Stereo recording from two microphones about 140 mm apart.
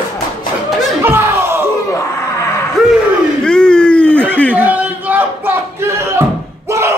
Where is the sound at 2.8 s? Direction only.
Centre (ahead or behind).